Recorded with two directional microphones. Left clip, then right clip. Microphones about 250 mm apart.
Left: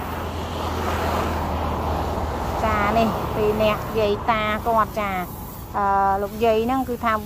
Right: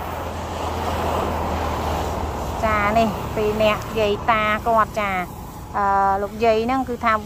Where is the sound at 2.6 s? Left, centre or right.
Centre.